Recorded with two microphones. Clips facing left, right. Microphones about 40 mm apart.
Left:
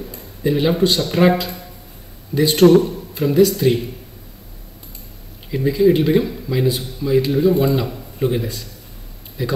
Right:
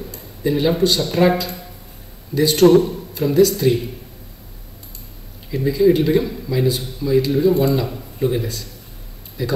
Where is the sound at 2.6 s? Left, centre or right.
Centre.